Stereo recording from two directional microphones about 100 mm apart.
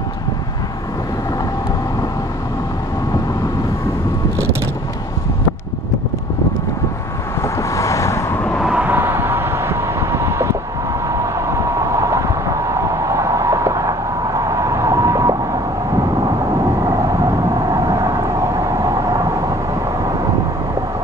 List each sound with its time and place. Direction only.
7.4 s vehicle: 30° left (ahead or behind)
8.5 s vehicle: 5° right (ahead or behind)
8.8 s vehicle: 20° right (ahead or behind)
13.0 s a sound: 30° right (ahead or behind)
16.8 s vehicle: 40° right (ahead or behind)